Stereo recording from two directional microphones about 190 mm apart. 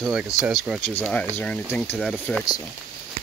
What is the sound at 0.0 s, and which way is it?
Speech, 5° right (ahead or behind).